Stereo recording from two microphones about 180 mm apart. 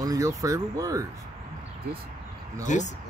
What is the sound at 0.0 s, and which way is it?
Speech, 20° right (ahead or behind).